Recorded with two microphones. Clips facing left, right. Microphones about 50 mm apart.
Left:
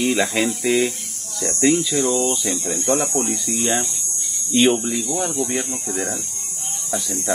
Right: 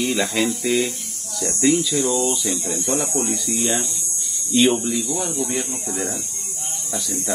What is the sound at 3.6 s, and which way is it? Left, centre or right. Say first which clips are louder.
Speech: left 2 dB; left.